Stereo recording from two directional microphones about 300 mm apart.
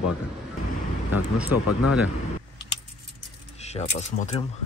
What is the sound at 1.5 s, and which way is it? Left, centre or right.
Speech, left.